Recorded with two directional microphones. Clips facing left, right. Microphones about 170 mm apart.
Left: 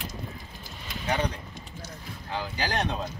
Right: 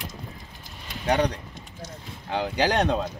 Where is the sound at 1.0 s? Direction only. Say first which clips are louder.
Right 6 dB; 70° right (ahead or behind).